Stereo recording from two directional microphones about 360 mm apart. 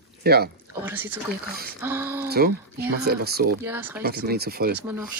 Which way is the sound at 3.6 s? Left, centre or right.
Centre.